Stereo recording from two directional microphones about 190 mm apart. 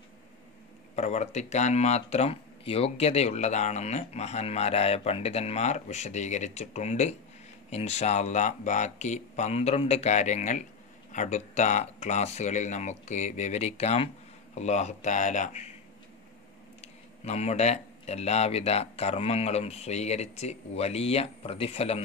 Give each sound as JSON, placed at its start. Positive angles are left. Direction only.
{"t": 0.9, "sound": "speech", "side_deg": 35}
{"t": 16.8, "sound": "speech", "side_deg": 35}